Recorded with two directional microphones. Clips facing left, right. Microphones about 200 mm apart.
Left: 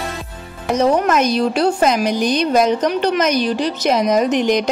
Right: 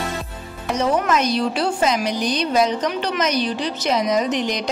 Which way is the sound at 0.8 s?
45° left (ahead or behind).